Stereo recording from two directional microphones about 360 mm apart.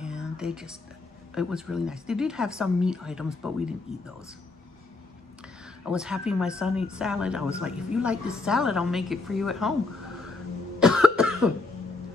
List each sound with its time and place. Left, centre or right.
0.0 s a sound: centre
1.3 s speech: centre
5.9 s speech: centre
10.8 s cough: centre